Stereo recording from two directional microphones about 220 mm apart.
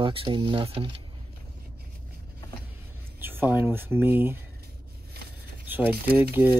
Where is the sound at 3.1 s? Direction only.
10° right (ahead or behind).